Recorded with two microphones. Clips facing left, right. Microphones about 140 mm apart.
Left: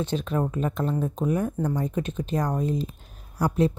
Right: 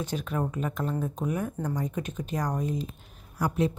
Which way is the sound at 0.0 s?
25° left (ahead or behind).